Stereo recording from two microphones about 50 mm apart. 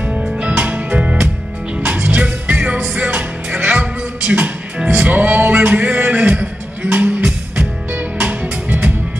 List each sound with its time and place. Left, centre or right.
0.0 s music: right
4.8 s music: right